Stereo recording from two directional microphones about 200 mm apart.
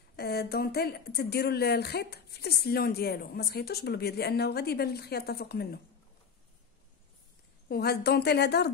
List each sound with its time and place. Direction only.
0.1 s speech: 55° left (ahead or behind)
7.6 s a woman's voice: 50° left (ahead or behind)